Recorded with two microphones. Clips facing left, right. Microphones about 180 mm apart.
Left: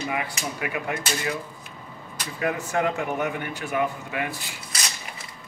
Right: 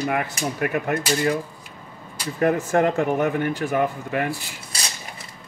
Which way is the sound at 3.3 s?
40° right (ahead or behind).